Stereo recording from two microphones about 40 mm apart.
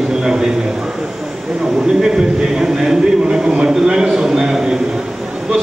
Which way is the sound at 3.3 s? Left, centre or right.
Centre.